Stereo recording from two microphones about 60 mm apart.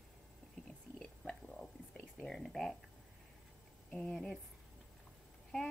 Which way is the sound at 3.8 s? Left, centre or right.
Left.